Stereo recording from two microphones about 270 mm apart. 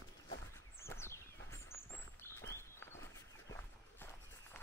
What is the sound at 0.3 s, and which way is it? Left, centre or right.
Walk, centre.